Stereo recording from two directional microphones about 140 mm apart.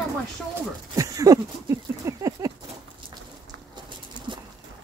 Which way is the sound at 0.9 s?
25° right (ahead or behind).